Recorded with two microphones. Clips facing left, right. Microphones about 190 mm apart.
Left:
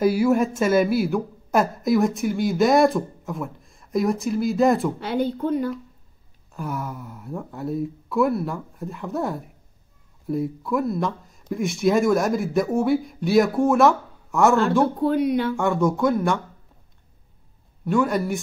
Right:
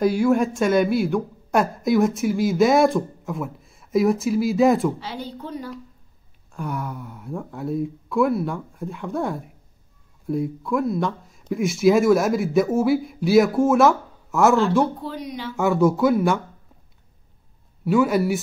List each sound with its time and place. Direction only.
0.0 s a woman's voice: 5° left (ahead or behind)
5.0 s speech: 55° left (ahead or behind)
6.5 s a woman's voice: centre (ahead or behind)
15.0 s speech: 55° left (ahead or behind)
15.5 s a woman's voice: 5° right (ahead or behind)
17.8 s a woman's voice: 5° right (ahead or behind)